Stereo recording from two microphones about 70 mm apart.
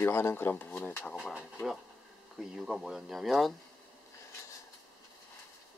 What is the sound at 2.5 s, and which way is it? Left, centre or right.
Speech, centre.